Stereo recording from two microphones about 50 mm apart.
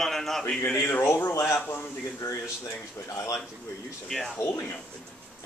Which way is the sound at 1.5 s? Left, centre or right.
Left.